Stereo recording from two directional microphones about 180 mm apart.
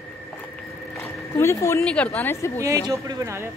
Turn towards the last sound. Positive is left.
turn(degrees=-15)  # may be behind; listen again after turning